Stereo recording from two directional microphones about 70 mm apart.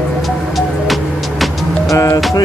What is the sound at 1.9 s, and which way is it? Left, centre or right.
Music, left.